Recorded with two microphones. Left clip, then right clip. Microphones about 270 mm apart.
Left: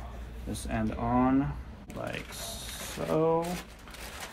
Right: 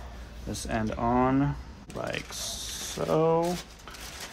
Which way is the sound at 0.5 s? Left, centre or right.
Right.